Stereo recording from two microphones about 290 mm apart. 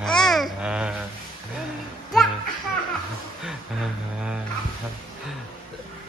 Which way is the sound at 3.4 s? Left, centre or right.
Centre.